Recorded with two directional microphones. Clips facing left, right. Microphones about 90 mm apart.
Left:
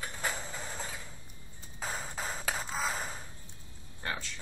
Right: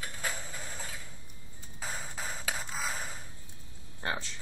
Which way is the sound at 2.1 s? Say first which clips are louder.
Left 2 dB; 15° left (ahead or behind).